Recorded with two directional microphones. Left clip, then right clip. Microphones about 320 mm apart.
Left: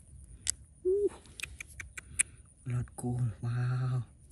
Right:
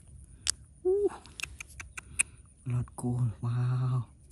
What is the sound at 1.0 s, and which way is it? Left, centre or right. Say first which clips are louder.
Owl: right 2 dB; centre.